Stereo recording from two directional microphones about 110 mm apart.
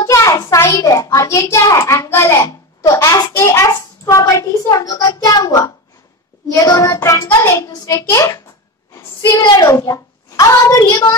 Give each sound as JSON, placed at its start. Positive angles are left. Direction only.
{"t": 0.0, "sound": "a child's voice", "side_deg": 30}
{"t": 9.6, "sound": "a child's voice", "side_deg": 30}